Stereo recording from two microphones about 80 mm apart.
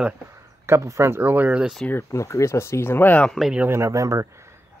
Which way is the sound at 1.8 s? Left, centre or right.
Centre.